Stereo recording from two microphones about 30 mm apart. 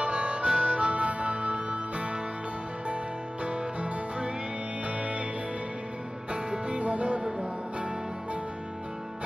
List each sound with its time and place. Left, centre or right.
0.0 s harmonica: right
0.9 s music: right
3.4 s music: right
6.5 s music: right